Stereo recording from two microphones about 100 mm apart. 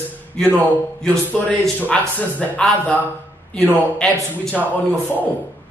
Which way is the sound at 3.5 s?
5° left (ahead or behind).